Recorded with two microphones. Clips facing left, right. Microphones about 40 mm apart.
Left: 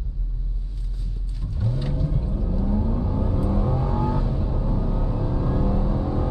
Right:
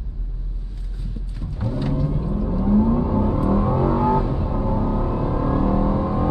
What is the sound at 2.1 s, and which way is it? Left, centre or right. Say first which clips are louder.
Vehicle: right 5 dB; right.